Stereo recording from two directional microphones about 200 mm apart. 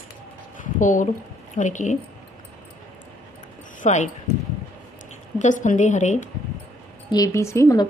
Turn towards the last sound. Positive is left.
turn(degrees=15)  # may be behind; listen again after turning